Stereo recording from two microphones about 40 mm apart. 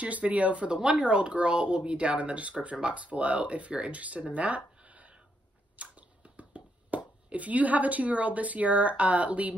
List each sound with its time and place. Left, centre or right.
0.0 s speech: right
5.8 s finger snapping: right
7.2 s speech: right